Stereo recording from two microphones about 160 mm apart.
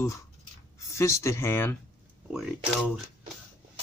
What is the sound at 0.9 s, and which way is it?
Speech, 15° left (ahead or behind).